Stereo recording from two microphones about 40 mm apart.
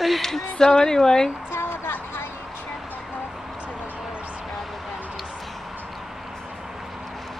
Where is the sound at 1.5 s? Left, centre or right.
Left.